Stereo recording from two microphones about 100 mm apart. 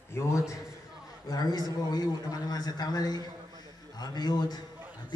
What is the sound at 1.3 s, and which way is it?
A man's voice, 40° left (ahead or behind).